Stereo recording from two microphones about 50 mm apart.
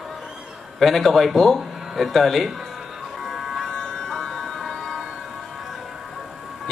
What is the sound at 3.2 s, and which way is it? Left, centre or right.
Electric shaver, centre.